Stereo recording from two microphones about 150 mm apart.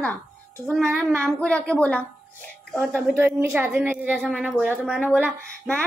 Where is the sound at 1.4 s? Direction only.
10° left (ahead or behind).